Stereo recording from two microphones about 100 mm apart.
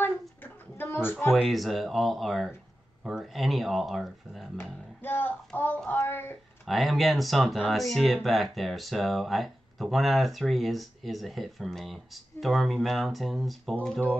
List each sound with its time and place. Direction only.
0.0 s a sound: 20° left (ahead or behind)
1.3 s speech: centre (ahead or behind)
5.0 s speech: 20° left (ahead or behind)
6.6 s speech: centre (ahead or behind)